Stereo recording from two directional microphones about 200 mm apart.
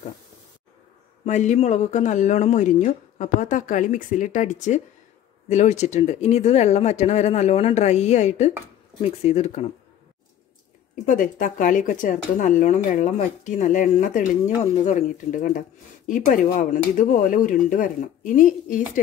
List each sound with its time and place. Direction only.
1.2 s speech: 35° left (ahead or behind)
11.1 s speech: 40° left (ahead or behind)